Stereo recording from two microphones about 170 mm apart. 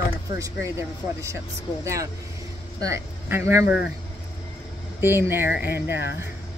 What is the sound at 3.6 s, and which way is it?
Speech, 75° left (ahead or behind).